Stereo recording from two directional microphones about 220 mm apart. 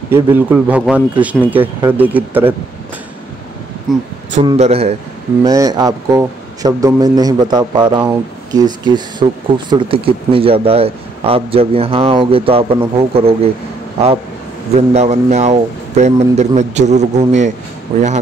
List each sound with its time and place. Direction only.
0.1 s speech: 10° right (ahead or behind)
3.9 s speech: centre (ahead or behind)
4.5 s a man's voice: 30° right (ahead or behind)
5.4 s a man's voice: 15° right (ahead or behind)
14.8 s speech: 30° right (ahead or behind)